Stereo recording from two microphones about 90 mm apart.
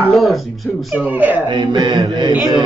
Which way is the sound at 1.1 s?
20° right (ahead or behind).